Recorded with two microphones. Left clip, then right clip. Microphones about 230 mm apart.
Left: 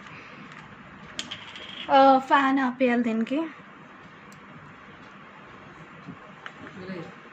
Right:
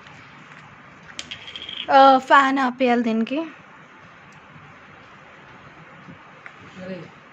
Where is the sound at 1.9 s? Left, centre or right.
Right; by 3.5 s centre.